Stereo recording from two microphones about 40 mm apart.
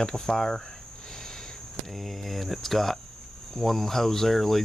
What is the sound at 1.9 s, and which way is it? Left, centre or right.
Speech, centre.